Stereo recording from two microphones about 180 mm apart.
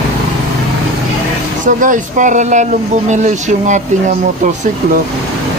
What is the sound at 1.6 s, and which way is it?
Speech, 45° right (ahead or behind).